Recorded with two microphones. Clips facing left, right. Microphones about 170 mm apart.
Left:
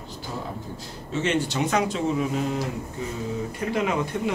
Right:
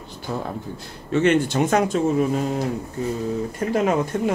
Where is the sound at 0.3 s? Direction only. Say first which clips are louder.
Right 6 dB; 65° right (ahead or behind).